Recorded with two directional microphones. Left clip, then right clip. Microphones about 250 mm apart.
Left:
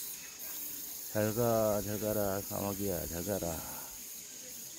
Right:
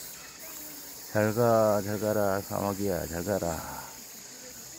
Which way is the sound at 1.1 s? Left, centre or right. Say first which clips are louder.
Right 7 dB; right.